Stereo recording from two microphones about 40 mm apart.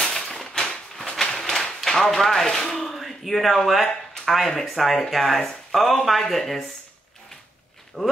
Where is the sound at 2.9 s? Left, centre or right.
Centre.